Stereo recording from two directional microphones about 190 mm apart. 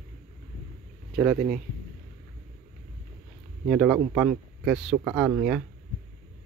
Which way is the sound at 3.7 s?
5° right (ahead or behind).